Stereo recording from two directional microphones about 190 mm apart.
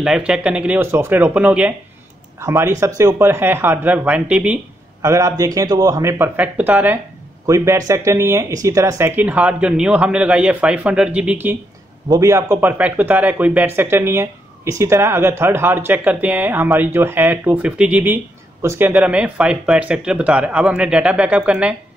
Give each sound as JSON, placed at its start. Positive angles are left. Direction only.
{"t": 0.0, "sound": "speech", "side_deg": -5}